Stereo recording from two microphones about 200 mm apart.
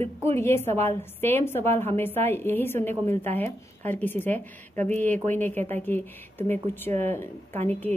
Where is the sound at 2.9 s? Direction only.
35° right (ahead or behind).